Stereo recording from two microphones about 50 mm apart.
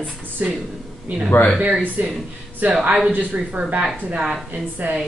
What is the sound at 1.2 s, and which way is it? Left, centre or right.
Speech, left.